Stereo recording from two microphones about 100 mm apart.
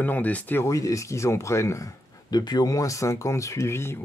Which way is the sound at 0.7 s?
35° left (ahead or behind).